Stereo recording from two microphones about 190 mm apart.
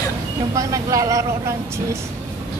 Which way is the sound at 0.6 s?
15° right (ahead or behind).